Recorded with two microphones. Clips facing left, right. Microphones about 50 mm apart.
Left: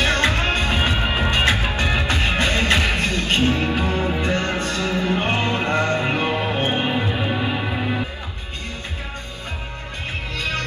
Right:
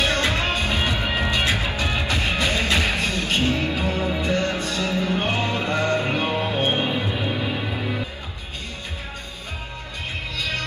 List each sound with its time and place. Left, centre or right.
0.0 s music: left
7.7 s music: left
10.3 s music: left